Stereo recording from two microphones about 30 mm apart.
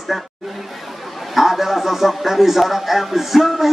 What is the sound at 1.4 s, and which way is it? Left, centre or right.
A man's voice, centre.